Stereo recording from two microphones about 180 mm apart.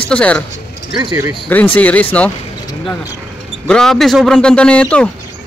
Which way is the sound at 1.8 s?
10° left (ahead or behind).